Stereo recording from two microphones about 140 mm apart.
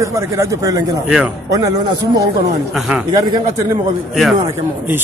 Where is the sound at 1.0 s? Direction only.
5° right (ahead or behind).